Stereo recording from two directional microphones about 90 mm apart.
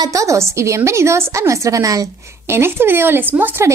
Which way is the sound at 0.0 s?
40° right (ahead or behind).